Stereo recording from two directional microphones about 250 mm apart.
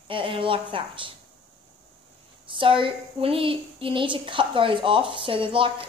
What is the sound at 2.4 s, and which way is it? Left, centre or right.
Speech, centre.